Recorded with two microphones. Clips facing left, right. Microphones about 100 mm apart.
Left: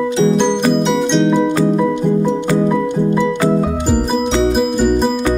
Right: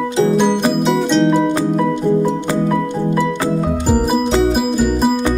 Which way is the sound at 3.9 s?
5° right (ahead or behind).